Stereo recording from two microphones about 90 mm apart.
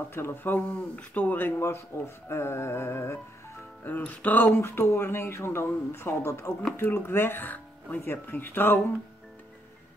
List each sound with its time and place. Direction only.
0.1 s speech: 25° left (ahead or behind)